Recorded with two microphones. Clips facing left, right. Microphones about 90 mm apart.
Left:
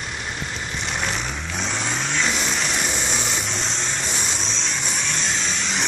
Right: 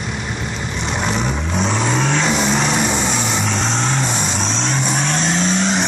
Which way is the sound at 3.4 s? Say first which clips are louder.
Right 8 dB; 75° right (ahead or behind).